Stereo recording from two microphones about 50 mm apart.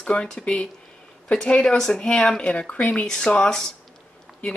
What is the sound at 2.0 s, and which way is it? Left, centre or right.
Speech, centre.